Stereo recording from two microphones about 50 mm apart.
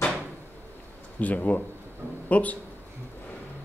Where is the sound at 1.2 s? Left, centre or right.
Left.